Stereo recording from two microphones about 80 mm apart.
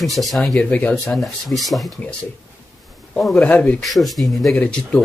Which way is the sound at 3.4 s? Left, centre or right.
Centre.